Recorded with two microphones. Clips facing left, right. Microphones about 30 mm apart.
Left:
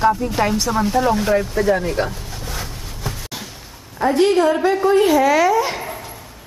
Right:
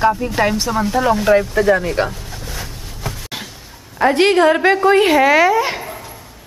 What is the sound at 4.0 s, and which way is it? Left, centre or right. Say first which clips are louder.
Speech: right 3 dB; right.